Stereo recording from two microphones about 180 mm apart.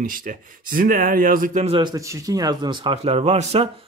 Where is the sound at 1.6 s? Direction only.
30° right (ahead or behind).